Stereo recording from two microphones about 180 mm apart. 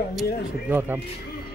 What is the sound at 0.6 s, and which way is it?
Speech, 10° right (ahead or behind).